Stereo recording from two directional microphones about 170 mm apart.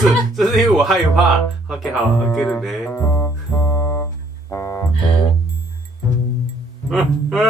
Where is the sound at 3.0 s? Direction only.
15° left (ahead or behind).